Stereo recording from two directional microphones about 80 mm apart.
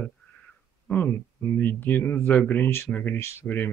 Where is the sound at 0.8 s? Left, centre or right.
Left.